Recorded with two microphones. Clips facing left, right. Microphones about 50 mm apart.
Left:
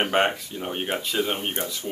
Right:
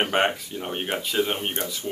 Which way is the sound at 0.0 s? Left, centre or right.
Centre.